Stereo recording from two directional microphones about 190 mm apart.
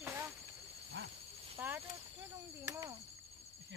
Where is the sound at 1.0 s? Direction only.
70° right (ahead or behind).